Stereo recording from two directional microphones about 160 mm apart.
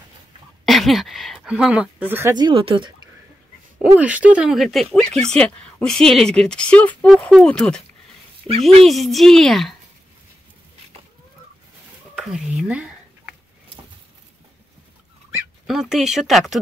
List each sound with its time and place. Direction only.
0.7 s a woman's voice: centre (ahead or behind)
2.3 s speech: 30° right (ahead or behind)
3.8 s a woman's voice: 10° right (ahead or behind)
12.2 s a sound: 5° right (ahead or behind)
15.6 s a woman's voice: 5° right (ahead or behind)